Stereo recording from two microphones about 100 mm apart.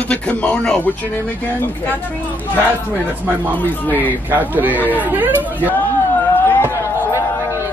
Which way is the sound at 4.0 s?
15° right (ahead or behind).